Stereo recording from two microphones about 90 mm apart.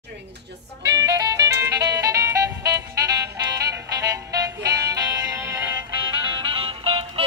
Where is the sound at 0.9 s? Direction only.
40° right (ahead or behind).